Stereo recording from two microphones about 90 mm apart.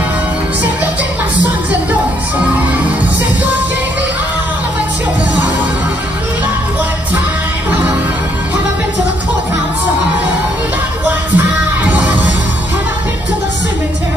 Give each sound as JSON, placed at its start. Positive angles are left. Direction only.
{"t": 11.3, "sound": "music", "side_deg": -15}